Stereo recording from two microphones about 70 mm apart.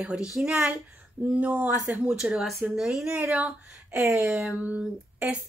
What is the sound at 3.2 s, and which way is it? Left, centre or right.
Speech, centre.